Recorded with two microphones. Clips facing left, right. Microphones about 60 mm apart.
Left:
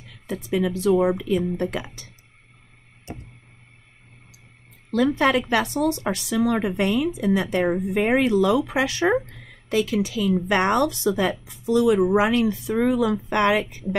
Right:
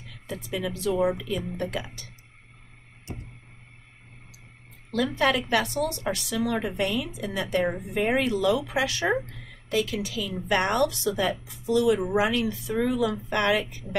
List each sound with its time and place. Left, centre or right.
0.3 s a woman's voice: left
4.9 s a woman's voice: left